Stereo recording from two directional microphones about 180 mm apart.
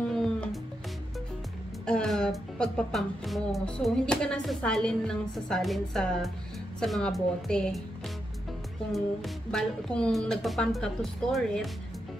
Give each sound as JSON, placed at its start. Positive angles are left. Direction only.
{"t": 0.1, "sound": "music", "side_deg": 5}
{"t": 1.9, "sound": "speech", "side_deg": 5}
{"t": 8.9, "sound": "speech", "side_deg": 0}